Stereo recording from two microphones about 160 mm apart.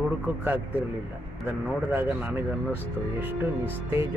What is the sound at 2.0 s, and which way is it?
Speech, 10° right (ahead or behind).